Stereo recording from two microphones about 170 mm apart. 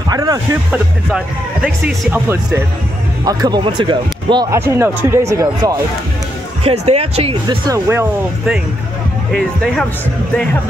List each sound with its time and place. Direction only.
0.1 s speech: 20° right (ahead or behind)
0.7 s speech: 5° right (ahead or behind)
3.3 s speech: 25° right (ahead or behind)
4.5 s speech: 15° right (ahead or behind)
6.6 s speech: 35° right (ahead or behind)
7.9 s speech: 10° right (ahead or behind)